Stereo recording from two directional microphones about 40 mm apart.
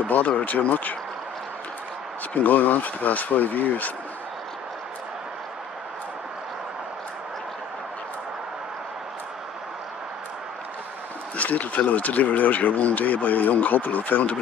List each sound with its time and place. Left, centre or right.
0.0 s speech: left
2.3 s speech: left
11.3 s speech: left